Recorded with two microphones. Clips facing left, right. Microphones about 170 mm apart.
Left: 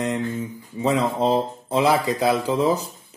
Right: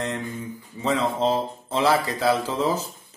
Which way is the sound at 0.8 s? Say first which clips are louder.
Left 2 dB; 15° left (ahead or behind).